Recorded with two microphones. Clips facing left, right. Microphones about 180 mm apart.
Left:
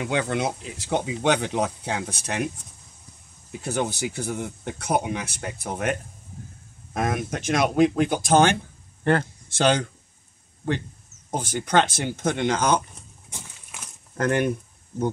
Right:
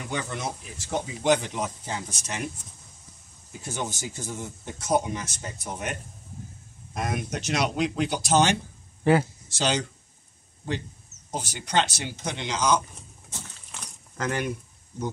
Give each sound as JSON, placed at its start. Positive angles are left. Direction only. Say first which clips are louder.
{"t": 0.0, "sound": "speech", "louder": "left 7 dB", "side_deg": 80}
{"t": 3.6, "sound": "speech", "louder": "left 7 dB", "side_deg": 60}
{"t": 9.0, "sound": "speech", "louder": "right 1 dB", "side_deg": -5}
{"t": 9.5, "sound": "speech", "louder": "left 6 dB", "side_deg": 55}
{"t": 13.3, "sound": "a sound", "louder": "even", "side_deg": 10}
{"t": 14.1, "sound": "speech", "louder": "left 6 dB", "side_deg": 55}